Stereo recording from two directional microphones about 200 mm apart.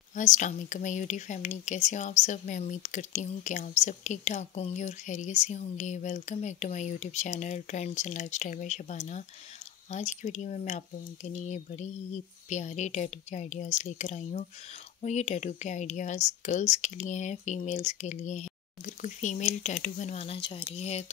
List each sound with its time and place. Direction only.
0.1 s speech: 40° left (ahead or behind)